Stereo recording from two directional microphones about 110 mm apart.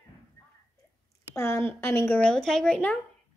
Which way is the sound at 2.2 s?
5° left (ahead or behind).